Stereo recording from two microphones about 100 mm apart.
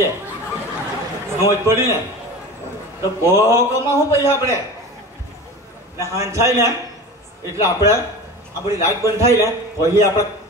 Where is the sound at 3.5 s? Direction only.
30° right (ahead or behind).